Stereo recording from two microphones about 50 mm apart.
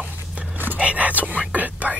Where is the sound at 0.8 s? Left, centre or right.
Right.